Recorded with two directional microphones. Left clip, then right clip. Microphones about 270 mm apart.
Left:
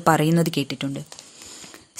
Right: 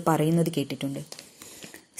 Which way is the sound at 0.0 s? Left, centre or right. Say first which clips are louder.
Left 5 dB; left.